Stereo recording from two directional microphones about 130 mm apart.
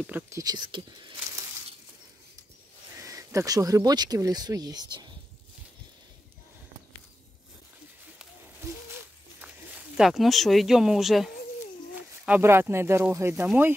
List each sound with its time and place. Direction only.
0.3 s speech: 30° right (ahead or behind)
3.0 s speech: 25° right (ahead or behind)
8.6 s a sound: 15° right (ahead or behind)
11.9 s speech: 15° right (ahead or behind)